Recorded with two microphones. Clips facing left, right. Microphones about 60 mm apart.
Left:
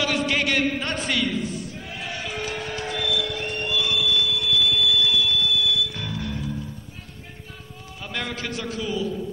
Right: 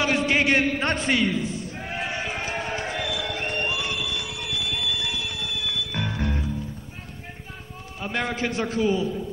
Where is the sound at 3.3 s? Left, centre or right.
Right.